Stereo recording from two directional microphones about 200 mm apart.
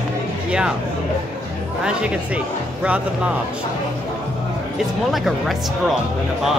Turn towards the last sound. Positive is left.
turn(degrees=0)  # may be behind; listen again after turning